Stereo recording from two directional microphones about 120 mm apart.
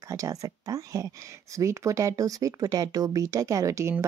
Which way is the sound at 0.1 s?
25° right (ahead or behind).